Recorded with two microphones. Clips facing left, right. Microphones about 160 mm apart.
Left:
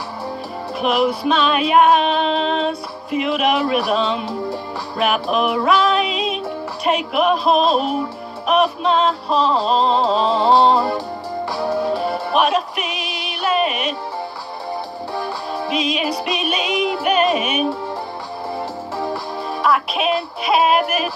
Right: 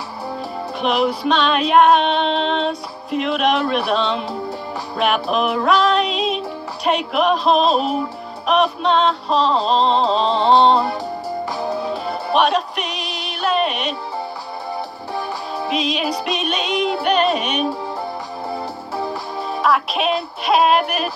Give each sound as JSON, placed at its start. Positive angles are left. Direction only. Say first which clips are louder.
{"t": 0.7, "sound": "music", "louder": "left 1 dB", "side_deg": 0}
{"t": 12.4, "sound": "music", "louder": "right 1 dB", "side_deg": 0}
{"t": 15.7, "sound": "music", "louder": "even", "side_deg": 0}
{"t": 19.6, "sound": "music", "louder": "even", "side_deg": 0}